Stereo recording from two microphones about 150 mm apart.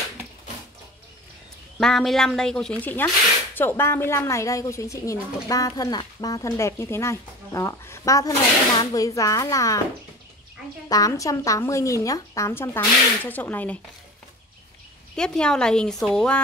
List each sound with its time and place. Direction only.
1.8 s a woman's voice: 5° left (ahead or behind); by 9.8 s 20° left (ahead or behind)
10.9 s a woman's voice: 25° left (ahead or behind)
15.1 s a woman's voice: 5° left (ahead or behind)